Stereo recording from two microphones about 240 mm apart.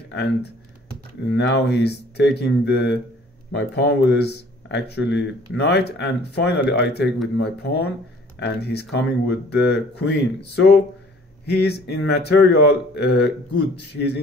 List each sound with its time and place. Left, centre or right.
0.1 s speech: left
11.4 s speech: left